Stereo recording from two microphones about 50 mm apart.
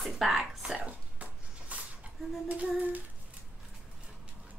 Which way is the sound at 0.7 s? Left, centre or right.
Right.